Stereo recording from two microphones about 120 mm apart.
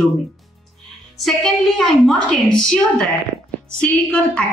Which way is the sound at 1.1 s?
Centre (ahead or behind).